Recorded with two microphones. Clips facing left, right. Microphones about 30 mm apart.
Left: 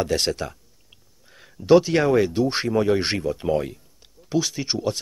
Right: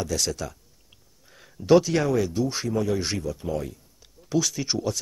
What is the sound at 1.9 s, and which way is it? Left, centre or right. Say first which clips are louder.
Speech: left 4 dB; left.